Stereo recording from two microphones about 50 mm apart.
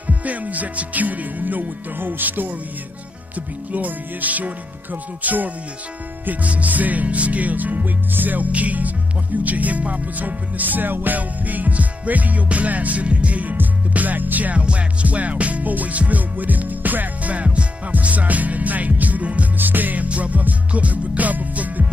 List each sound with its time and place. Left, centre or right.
0.0 s music: right
19.5 s music: right